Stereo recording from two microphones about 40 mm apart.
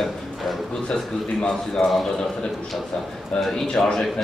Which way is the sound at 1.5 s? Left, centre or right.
Centre.